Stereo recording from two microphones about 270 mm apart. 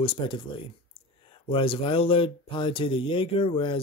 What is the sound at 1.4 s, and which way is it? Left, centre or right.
Speech, centre.